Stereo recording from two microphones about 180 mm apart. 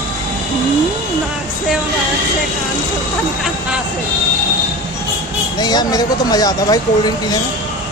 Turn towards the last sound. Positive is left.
turn(degrees=20)  # may be behind; listen again after turning